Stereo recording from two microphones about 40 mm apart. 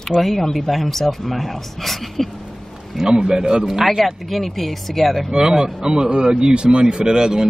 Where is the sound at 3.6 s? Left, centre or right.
Centre.